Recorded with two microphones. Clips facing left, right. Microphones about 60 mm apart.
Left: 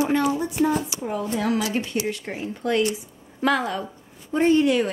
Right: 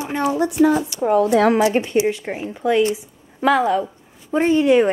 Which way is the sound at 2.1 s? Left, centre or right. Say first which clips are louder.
Right 4 dB; centre.